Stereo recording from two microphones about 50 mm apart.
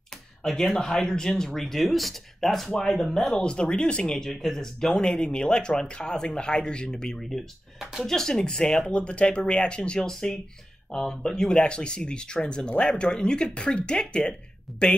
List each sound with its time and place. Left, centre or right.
0.4 s speech: centre
14.7 s a man's voice: centre